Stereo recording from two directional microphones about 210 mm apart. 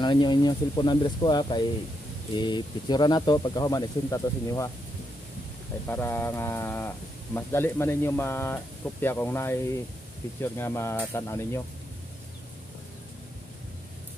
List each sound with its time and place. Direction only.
0.0 s speech: 20° left (ahead or behind)
5.9 s speech: 10° left (ahead or behind)